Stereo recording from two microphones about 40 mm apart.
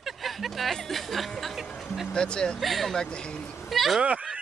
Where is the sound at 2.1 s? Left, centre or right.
Left.